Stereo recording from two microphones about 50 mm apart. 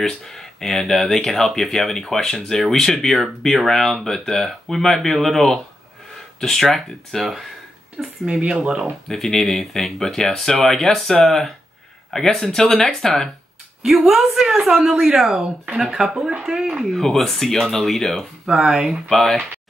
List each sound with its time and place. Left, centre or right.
0.2 s speech: centre
8.3 s speech: centre
9.1 s speech: centre
13.8 s speech: centre
16.9 s speech: centre
18.5 s speech: centre
19.0 s speech: centre